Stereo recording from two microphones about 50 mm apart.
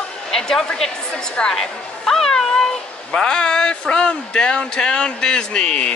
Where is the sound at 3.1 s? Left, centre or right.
Centre.